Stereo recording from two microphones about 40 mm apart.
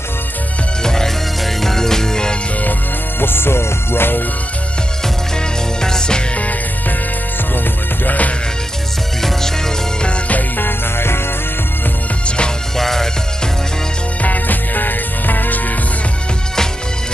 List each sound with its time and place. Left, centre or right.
0.8 s music: centre
3.2 s music: left
5.8 s music: centre
8.0 s music: left
10.0 s music: left
10.6 s music: left
12.7 s music: centre
14.2 s music: left